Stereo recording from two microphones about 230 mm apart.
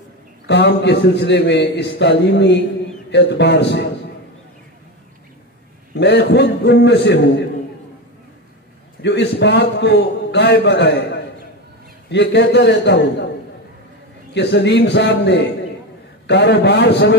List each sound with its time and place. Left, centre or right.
0.5 s a man's voice: left
5.9 s a man's voice: left
9.0 s a man's voice: left
14.3 s a man's voice: left